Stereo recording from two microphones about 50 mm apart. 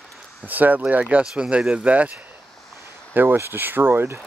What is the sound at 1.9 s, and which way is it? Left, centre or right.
Speech, right.